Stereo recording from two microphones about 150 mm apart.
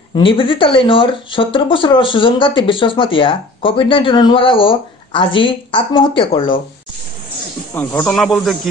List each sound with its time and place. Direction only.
0.1 s speech: 35° left (ahead or behind)
7.7 s speech: 15° left (ahead or behind)
8.1 s speech: centre (ahead or behind)